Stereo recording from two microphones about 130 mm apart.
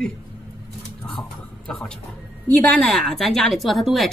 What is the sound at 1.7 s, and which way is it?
A man's voice, 5° left (ahead or behind).